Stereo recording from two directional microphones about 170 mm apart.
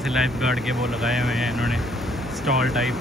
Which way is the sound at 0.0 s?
Centre (ahead or behind).